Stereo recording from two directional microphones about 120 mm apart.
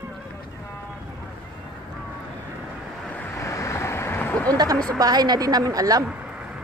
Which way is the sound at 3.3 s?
25° left (ahead or behind).